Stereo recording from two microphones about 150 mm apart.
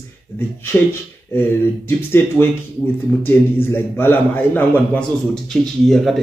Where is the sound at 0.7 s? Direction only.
10° left (ahead or behind).